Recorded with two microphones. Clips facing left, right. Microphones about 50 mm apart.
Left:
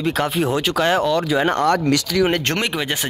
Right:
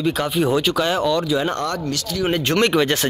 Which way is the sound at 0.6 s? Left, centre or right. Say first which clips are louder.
Even; left.